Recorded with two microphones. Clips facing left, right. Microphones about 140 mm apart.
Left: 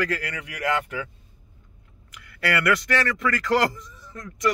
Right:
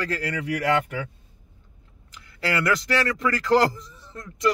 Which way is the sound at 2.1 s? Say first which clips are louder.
Left 1 dB; 30° right (ahead or behind).